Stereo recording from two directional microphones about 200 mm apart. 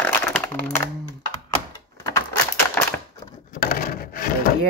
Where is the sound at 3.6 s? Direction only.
50° left (ahead or behind).